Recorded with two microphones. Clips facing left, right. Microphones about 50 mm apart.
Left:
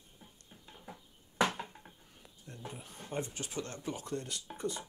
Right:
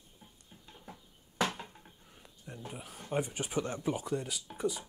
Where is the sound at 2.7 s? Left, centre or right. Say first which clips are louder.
Right 3 dB; centre.